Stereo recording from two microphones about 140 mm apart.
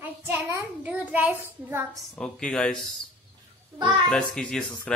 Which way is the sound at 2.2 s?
5° left (ahead or behind).